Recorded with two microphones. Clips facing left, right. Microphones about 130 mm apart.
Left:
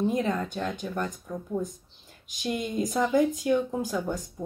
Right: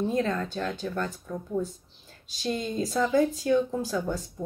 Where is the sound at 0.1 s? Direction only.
15° left (ahead or behind).